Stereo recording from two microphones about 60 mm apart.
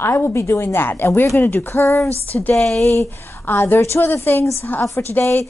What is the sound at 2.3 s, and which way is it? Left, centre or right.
Speech, left.